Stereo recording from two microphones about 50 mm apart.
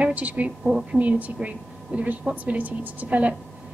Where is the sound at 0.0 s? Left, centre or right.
Right.